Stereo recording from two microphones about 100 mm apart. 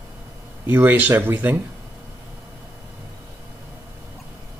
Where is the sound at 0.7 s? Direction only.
15° right (ahead or behind).